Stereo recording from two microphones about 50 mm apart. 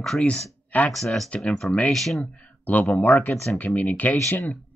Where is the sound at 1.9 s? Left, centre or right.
Centre.